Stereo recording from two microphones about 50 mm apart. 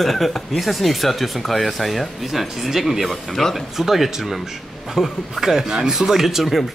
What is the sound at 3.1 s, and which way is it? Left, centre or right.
Speech, centre.